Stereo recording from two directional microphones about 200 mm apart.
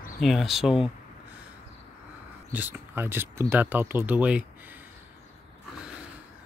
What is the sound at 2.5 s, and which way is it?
Speech, 10° right (ahead or behind).